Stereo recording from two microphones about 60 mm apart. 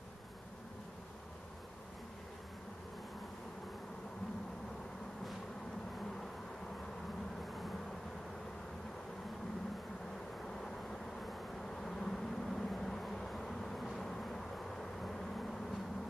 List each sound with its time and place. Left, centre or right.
10.4 s vehicle: centre